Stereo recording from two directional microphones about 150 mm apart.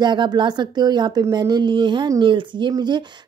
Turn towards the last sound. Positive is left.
turn(degrees=-30)  # may be behind; listen again after turning